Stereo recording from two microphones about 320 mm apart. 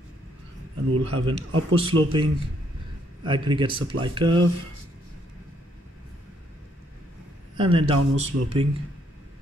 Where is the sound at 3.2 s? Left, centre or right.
Centre.